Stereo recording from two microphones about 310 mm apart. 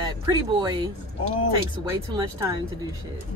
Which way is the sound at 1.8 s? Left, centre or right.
Centre.